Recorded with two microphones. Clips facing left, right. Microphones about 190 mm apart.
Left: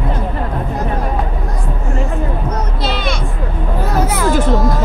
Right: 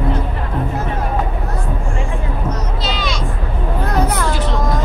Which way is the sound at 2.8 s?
55° left (ahead or behind).